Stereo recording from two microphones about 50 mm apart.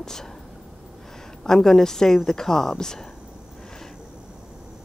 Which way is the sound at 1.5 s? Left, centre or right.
Centre.